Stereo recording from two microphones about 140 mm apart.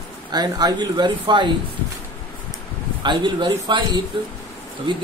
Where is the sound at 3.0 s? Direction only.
35° right (ahead or behind).